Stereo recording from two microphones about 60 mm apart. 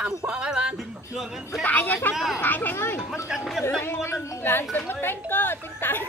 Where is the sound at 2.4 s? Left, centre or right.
Left.